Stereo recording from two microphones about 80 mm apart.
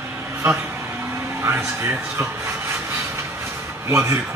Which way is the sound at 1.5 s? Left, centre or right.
Centre.